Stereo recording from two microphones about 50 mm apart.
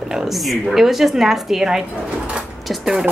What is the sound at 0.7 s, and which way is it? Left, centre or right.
Speech, centre.